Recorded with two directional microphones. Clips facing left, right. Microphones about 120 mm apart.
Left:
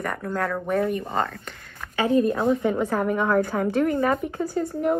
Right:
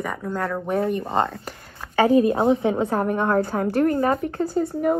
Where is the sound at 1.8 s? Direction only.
5° right (ahead or behind).